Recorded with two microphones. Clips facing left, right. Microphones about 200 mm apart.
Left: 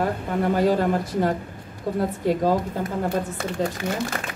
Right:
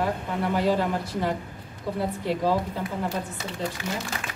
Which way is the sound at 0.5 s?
50° left (ahead or behind).